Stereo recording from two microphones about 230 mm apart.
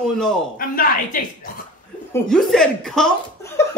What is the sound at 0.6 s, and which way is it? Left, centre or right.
Speech, left.